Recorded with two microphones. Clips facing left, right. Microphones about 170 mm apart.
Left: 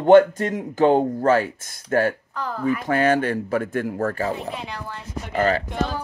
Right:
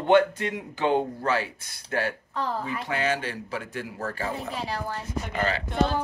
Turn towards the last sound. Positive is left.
turn(degrees=45)  # may be behind; listen again after turning